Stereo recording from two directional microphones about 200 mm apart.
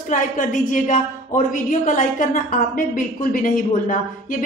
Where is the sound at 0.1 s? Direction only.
40° left (ahead or behind).